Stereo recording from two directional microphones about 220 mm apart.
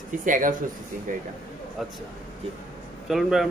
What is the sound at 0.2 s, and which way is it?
Speech, 35° right (ahead or behind).